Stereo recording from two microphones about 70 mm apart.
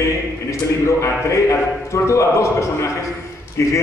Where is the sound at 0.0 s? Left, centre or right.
Left.